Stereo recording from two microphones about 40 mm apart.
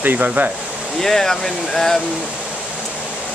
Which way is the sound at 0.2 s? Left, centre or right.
Right.